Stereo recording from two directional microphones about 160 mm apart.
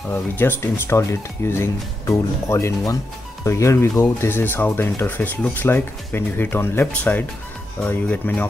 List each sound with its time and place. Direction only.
0.1 s speech: 15° left (ahead or behind)